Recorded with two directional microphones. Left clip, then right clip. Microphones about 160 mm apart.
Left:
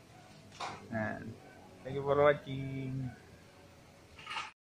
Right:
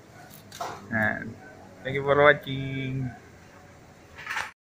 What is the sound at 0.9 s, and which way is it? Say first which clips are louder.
Speech: right 14 dB; 15° right (ahead or behind).